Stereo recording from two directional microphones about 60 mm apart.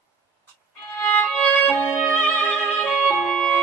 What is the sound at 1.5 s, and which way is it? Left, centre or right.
Music, left.